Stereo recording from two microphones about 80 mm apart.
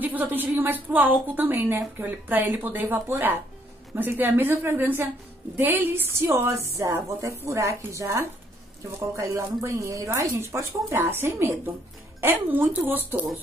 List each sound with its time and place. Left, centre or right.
0.0 s a woman's voice: right